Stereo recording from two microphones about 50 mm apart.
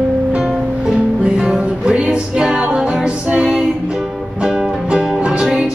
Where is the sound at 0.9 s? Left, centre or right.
Centre.